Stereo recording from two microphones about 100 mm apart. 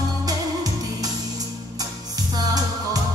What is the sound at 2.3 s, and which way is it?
Music, 40° right (ahead or behind).